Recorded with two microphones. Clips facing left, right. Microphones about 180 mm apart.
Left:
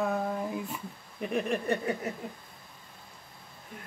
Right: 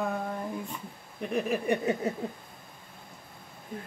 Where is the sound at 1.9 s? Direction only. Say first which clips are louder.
Right 3 dB; 20° right (ahead or behind).